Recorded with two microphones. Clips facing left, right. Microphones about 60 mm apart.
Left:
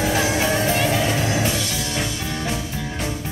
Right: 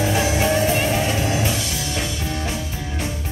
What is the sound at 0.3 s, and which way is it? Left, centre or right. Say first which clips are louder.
Music: right 1 dB; left.